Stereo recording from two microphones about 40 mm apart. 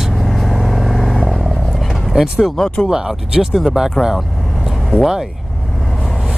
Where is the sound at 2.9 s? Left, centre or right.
Centre.